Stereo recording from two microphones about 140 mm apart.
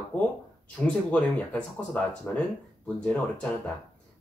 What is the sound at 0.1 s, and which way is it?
Speech, 10° left (ahead or behind).